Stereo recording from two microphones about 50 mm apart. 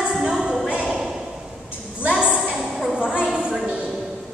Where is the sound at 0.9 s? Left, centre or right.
Centre.